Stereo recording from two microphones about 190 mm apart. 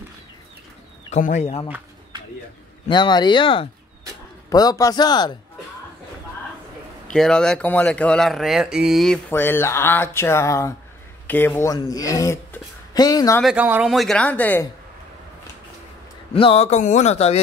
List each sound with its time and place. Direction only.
1.1 s speech: 40° left (ahead or behind)
2.9 s a man's voice: 25° left (ahead or behind)
7.1 s speech: 5° left (ahead or behind)
9.3 s speech: 10° left (ahead or behind)
13.4 s speech: 5° right (ahead or behind)
16.3 s speech: 30° left (ahead or behind)